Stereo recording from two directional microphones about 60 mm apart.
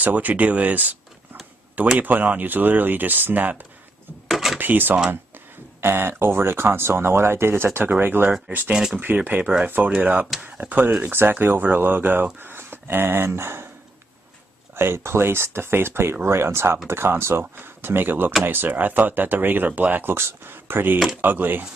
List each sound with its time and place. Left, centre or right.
0.0 s speech: right
2.0 s speech: right
4.3 s a sound: centre
4.6 s speech: right
14.8 s speech: right